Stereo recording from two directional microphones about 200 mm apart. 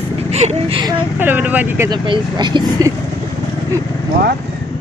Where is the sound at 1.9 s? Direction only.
20° right (ahead or behind).